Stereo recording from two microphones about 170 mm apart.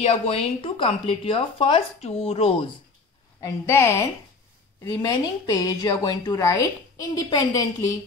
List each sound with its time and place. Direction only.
0.0 s speech: 35° left (ahead or behind)
3.3 s a woman's voice: 20° left (ahead or behind)